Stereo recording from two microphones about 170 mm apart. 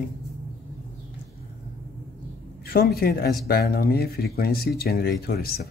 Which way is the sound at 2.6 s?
65° left (ahead or behind).